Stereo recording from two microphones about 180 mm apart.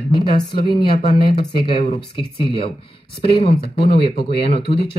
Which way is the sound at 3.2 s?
30° left (ahead or behind).